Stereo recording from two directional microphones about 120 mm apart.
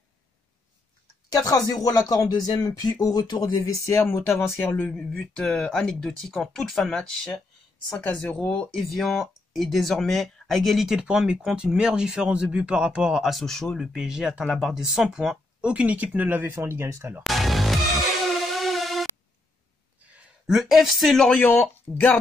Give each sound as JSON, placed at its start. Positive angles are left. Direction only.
{"t": 1.3, "sound": "speech", "side_deg": 30}
{"t": 4.8, "sound": "speech", "side_deg": 5}
{"t": 17.2, "sound": "music", "side_deg": 0}
{"t": 20.4, "sound": "speech", "side_deg": -5}